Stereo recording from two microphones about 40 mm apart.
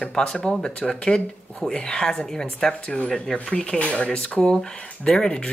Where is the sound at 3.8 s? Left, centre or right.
Left.